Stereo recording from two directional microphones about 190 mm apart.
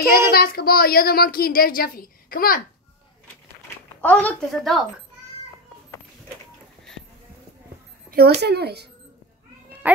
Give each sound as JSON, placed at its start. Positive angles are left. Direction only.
{"t": 0.3, "sound": "a woman's voice", "side_deg": 50}
{"t": 4.0, "sound": "speech", "side_deg": 10}
{"t": 8.1, "sound": "speech", "side_deg": -55}
{"t": 9.8, "sound": "speech", "side_deg": -10}